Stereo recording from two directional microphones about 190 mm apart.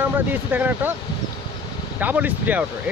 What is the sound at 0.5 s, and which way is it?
Speech, 10° right (ahead or behind).